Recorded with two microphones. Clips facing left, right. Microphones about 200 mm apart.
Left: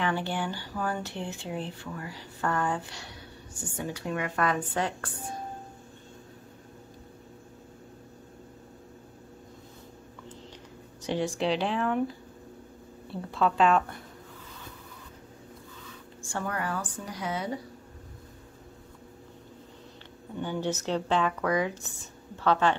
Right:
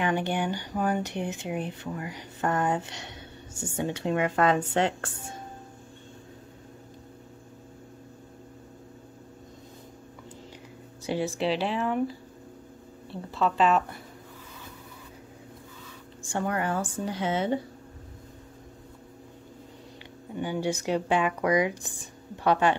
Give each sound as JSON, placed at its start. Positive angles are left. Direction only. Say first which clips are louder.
{"t": 0.0, "sound": "speech", "louder": "right 3 dB", "side_deg": -20}
{"t": 11.1, "sound": "speech", "louder": "right 1 dB", "side_deg": -5}
{"t": 16.2, "sound": "speech", "louder": "right 4 dB", "side_deg": -20}
{"t": 20.3, "sound": "speech", "louder": "right 2 dB", "side_deg": -10}